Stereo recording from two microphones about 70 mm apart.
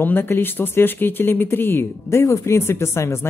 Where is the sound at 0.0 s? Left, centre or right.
Left.